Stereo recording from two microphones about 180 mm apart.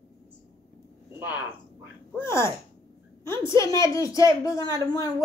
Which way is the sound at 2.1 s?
15° left (ahead or behind).